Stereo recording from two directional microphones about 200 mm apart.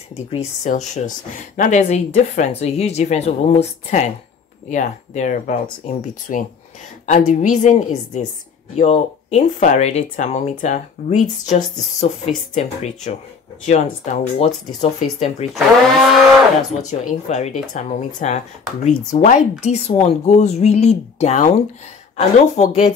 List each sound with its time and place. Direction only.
0.3 s speech: 35° left (ahead or behind)
13.7 s speech: 35° left (ahead or behind)
15.5 s speech: centre (ahead or behind)
16.8 s speech: 35° left (ahead or behind)